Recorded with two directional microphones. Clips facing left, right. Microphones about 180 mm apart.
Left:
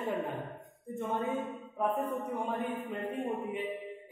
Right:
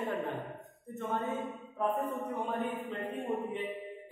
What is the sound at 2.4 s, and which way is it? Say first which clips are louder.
Speech: even; 10° left (ahead or behind).